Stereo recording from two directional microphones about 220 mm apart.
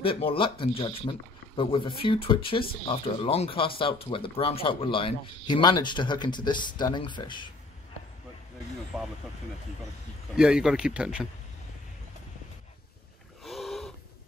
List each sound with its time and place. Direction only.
0.0 s speech: 25° left (ahead or behind)
8.9 s speech: centre (ahead or behind)
10.3 s speech: 5° right (ahead or behind)
13.4 s a sound: centre (ahead or behind)